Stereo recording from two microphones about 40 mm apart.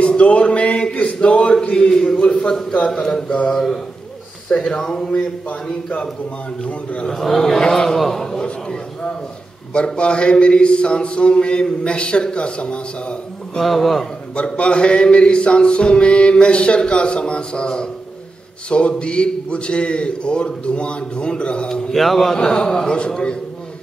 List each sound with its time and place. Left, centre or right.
0.2 s music: left
0.9 s a sound: left
2.9 s a man's voice: centre
5.1 s speech: left
6.6 s music: left
7.1 s a man's voice: centre
8.4 s music: centre
13.6 s a man's voice: centre
14.3 s music: left
21.9 s a man's voice: centre
22.8 s music: left